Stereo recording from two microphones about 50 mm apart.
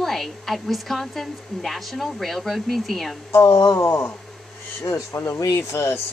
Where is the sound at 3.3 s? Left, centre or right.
Left.